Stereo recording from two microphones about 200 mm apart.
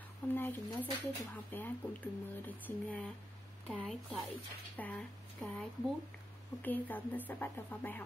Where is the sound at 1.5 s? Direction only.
10° left (ahead or behind).